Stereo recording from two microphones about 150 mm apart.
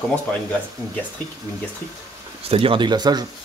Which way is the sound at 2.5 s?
35° right (ahead or behind).